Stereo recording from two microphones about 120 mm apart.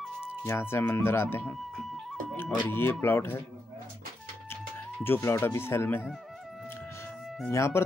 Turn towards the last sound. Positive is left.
turn(degrees=20)  # may be behind; listen again after turning